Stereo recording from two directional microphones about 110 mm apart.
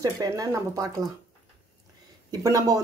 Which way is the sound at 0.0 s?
30° right (ahead or behind).